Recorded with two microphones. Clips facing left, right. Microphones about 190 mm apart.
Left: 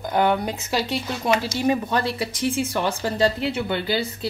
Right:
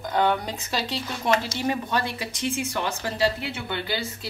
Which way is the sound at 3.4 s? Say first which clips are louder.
Left 7 dB; 20° left (ahead or behind).